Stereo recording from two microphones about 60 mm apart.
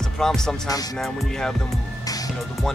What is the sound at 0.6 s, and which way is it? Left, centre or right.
Speech, left.